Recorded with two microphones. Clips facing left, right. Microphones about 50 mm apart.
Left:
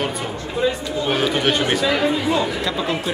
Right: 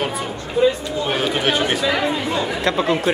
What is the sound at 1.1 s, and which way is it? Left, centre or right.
Speech, centre.